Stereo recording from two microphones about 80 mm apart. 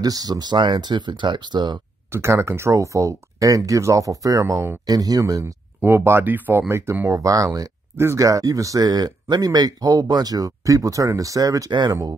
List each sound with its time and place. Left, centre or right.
0.0 s speech: right
2.1 s speech: right
5.4 s speech: right
7.1 s speech: right
11.7 s speech: right